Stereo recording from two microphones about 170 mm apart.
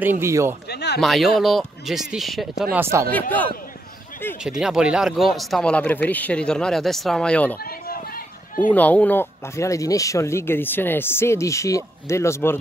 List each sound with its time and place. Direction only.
0.0 s speech: 15° right (ahead or behind)
0.7 s a sound: 75° left (ahead or behind)
1.0 s speech: centre (ahead or behind)
2.7 s speech: 15° right (ahead or behind)
3.1 s speech: 10° left (ahead or behind)
4.4 s speech: 5° right (ahead or behind)
8.6 s speech: 10° left (ahead or behind)